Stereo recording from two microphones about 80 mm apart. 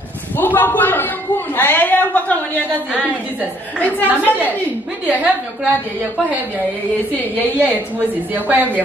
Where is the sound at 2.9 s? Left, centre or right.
Centre.